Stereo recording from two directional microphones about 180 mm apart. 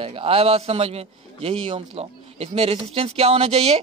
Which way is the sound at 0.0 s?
30° right (ahead or behind).